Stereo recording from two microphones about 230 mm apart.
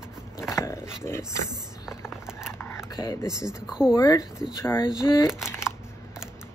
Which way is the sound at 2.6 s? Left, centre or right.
Centre.